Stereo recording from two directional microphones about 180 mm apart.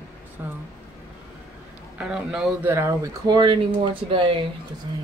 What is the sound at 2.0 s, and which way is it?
Speech, 5° right (ahead or behind).